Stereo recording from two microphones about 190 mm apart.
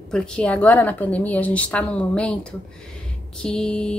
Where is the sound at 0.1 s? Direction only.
5° left (ahead or behind).